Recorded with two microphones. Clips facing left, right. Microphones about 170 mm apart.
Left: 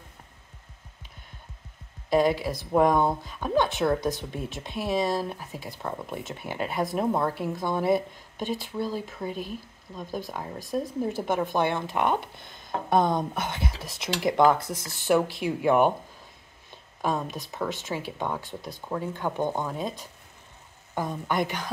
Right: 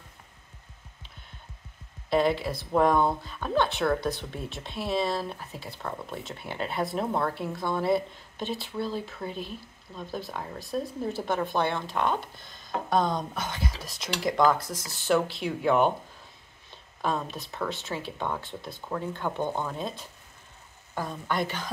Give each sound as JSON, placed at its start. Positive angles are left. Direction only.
{"t": 2.0, "sound": "speech", "side_deg": 10}
{"t": 13.8, "sound": "speech", "side_deg": 60}
{"t": 14.1, "sound": "speech", "side_deg": 20}
{"t": 14.6, "sound": "speech", "side_deg": 55}
{"t": 15.4, "sound": "speech", "side_deg": 10}